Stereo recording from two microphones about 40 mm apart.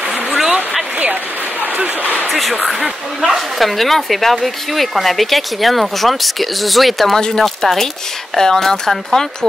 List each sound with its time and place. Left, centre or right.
0.3 s a sound: centre
2.2 s speech: centre
7.2 s speech: centre